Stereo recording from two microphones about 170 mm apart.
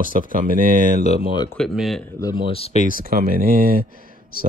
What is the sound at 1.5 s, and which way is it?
Speech, centre (ahead or behind).